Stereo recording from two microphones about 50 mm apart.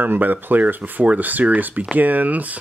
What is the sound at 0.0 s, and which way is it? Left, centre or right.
Speech, right.